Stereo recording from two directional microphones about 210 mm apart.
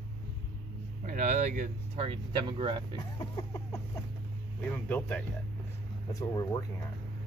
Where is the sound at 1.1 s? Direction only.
40° right (ahead or behind).